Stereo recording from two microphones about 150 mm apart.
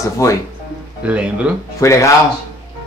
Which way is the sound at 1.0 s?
10° right (ahead or behind).